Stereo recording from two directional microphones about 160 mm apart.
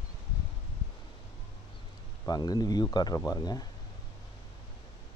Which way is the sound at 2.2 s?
25° left (ahead or behind).